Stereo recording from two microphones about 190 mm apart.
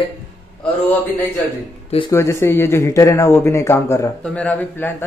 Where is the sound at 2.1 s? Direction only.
15° left (ahead or behind).